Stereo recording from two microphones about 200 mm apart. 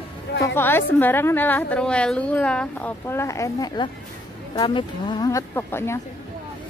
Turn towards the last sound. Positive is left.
turn(degrees=10)  # may be behind; listen again after turning